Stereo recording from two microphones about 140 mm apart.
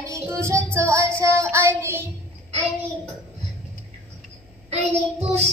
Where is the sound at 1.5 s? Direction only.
15° right (ahead or behind).